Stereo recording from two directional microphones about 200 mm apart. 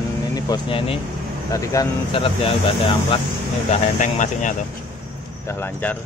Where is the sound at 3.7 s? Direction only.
35° left (ahead or behind).